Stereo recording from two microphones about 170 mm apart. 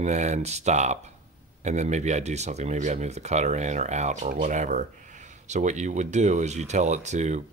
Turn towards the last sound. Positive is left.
turn(degrees=-45)  # may be behind; listen again after turning